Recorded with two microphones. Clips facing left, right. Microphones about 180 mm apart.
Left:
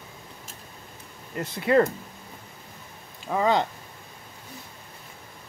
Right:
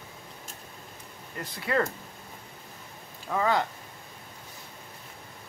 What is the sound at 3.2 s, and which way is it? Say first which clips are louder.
Speech: left 3 dB; 20° left (ahead or behind).